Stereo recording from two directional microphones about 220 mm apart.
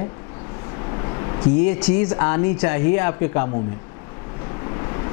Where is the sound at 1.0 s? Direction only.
20° left (ahead or behind).